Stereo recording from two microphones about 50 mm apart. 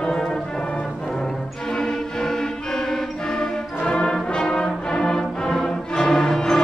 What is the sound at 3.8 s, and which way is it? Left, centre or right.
Brass instrument, centre.